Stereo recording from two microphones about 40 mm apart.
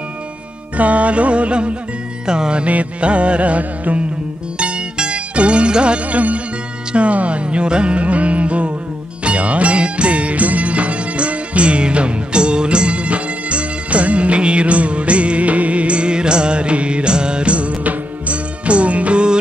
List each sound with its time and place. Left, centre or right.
0.7 s music: right; by 2.6 s centre
2.6 s music: right
6.0 s music: right